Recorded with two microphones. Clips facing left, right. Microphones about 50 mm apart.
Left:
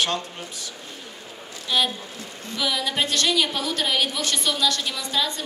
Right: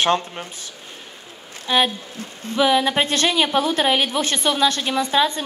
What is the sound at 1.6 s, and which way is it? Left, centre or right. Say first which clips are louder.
A woman's voice: right 5 dB; right.